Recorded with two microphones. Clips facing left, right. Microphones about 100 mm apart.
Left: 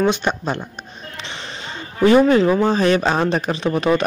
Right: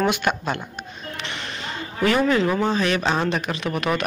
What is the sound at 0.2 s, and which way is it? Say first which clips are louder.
Speech: left 2 dB; 30° left (ahead or behind).